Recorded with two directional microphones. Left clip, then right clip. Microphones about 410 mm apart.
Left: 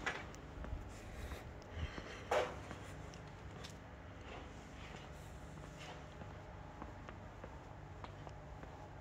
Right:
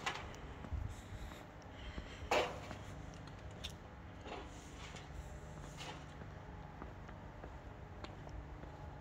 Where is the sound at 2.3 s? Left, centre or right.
Right.